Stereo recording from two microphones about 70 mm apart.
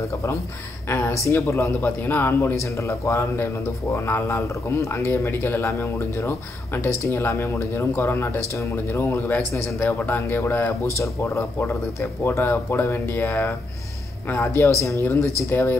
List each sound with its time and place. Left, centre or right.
0.8 s speech: left
2.8 s speech: left
9.8 s speech: left
11.0 s speech: left
15.5 s speech: left